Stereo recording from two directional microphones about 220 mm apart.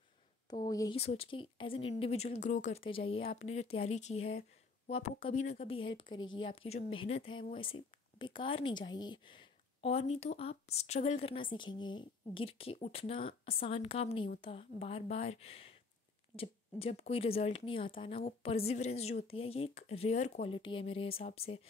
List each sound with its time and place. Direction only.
0.5 s a woman's voice: 15° left (ahead or behind)